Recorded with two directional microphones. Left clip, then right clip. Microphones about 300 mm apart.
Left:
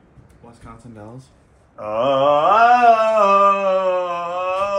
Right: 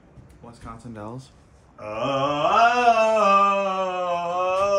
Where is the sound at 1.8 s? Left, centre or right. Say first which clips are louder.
Left 7 dB; centre.